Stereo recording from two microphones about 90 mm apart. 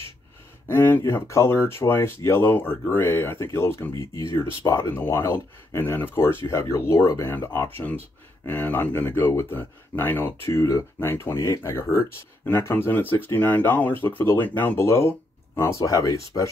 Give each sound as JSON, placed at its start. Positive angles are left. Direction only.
{"t": 0.7, "sound": "speech", "side_deg": 25}
{"t": 6.4, "sound": "speech", "side_deg": 35}
{"t": 11.1, "sound": "speech", "side_deg": 25}
{"t": 11.3, "sound": "speech", "side_deg": 40}
{"t": 12.4, "sound": "speech", "side_deg": 25}